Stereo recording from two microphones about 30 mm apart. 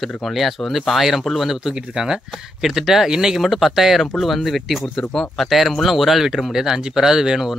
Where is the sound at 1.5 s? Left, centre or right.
Centre.